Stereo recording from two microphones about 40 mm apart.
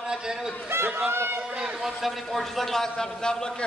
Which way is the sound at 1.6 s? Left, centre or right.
Centre.